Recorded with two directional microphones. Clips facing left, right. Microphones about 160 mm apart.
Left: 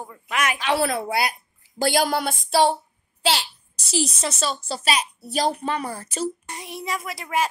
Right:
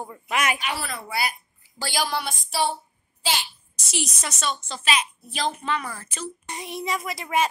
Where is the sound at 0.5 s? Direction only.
90° left.